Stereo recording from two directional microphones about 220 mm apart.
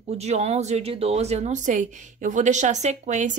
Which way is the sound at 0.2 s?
30° right (ahead or behind).